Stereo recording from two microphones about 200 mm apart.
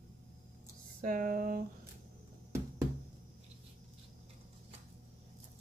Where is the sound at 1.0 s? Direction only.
45° right (ahead or behind).